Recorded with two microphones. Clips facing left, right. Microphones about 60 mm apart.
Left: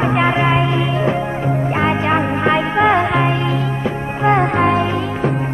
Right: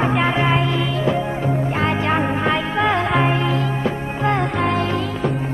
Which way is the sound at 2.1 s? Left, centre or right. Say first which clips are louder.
Left 3 dB; centre.